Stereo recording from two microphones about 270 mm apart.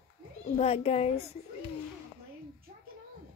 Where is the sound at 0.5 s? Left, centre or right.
Left.